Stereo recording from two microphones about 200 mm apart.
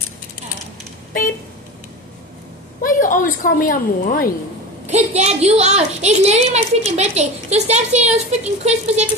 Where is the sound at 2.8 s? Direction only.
40° left (ahead or behind).